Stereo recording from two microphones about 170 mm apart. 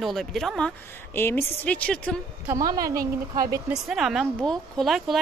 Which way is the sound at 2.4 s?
20° right (ahead or behind).